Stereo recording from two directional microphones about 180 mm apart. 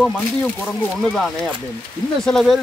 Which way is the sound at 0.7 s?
5° left (ahead or behind).